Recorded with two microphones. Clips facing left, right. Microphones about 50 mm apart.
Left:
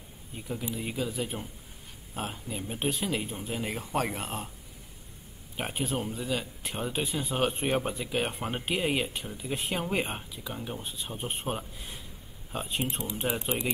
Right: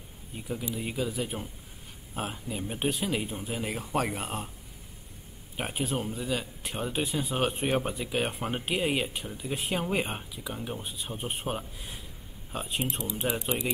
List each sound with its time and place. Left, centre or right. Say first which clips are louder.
0.4 s speech: right 1 dB; centre
5.6 s speech: even; centre
13.3 s speech: even; left